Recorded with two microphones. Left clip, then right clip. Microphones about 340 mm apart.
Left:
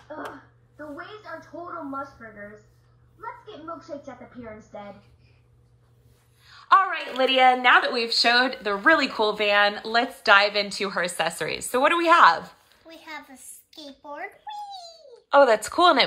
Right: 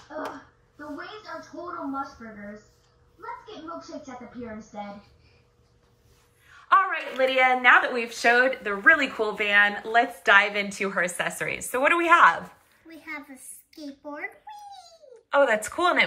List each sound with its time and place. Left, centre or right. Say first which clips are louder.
6.5 s speech: left 2 dB; centre
13.0 s a sound: right 2 dB; centre
15.2 s speech: left 4 dB; centre